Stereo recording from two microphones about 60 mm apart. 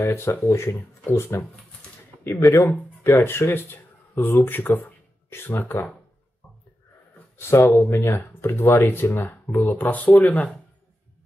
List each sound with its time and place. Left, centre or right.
0.0 s speech: left
1.0 s speech: left
7.3 s speech: left